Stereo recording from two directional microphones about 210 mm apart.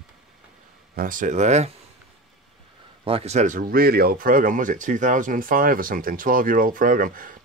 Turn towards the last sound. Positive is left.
turn(degrees=-40)  # may be behind; listen again after turning